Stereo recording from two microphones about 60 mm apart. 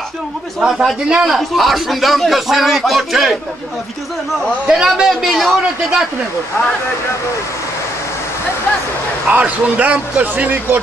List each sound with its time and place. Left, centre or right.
0.6 s a man's voice: centre
4.6 s a man's voice: centre
9.3 s speech: right